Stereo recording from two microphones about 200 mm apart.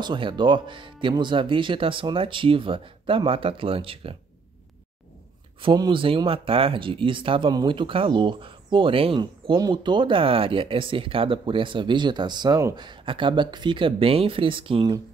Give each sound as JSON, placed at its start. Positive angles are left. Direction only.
{"t": 0.0, "sound": "speech", "side_deg": -25}
{"t": 5.6, "sound": "speech", "side_deg": -25}